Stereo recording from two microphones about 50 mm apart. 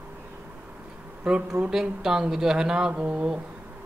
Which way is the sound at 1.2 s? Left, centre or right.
Centre.